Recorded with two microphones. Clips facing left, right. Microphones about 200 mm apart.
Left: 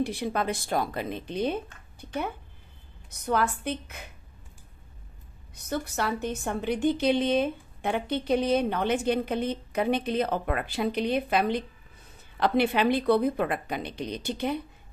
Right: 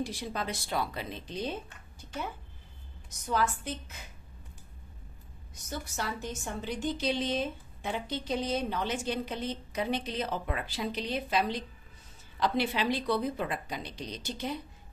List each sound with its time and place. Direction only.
0.0 s a woman's voice: 60° left (ahead or behind)
5.5 s a woman's voice: 60° left (ahead or behind)